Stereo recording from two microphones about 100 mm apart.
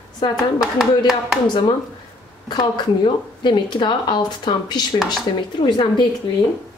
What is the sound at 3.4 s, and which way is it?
A woman's voice, 50° left (ahead or behind).